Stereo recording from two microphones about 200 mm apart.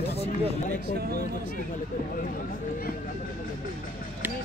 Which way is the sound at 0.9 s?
50° right (ahead or behind).